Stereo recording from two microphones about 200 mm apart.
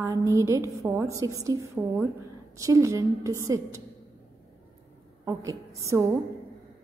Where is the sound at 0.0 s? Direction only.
15° right (ahead or behind).